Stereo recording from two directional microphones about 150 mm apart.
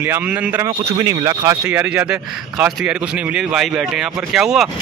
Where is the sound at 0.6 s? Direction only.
20° right (ahead or behind).